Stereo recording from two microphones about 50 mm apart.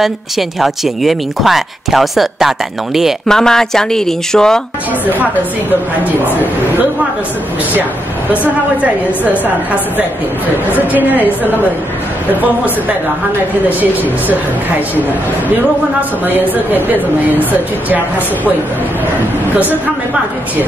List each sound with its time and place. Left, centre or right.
0.0 s speech: centre
3.3 s speech: centre
8.8 s a woman's voice: right
10.9 s speech: right
17.5 s speech: right